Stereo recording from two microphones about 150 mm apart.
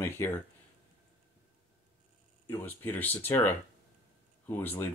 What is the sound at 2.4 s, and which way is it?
Speech, 15° left (ahead or behind).